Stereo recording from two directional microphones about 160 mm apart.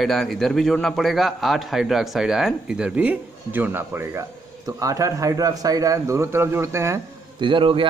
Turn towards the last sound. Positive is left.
turn(degrees=-35)  # may be behind; listen again after turning